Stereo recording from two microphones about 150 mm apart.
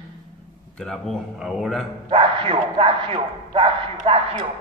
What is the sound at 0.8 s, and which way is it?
A man's voice, 5° left (ahead or behind).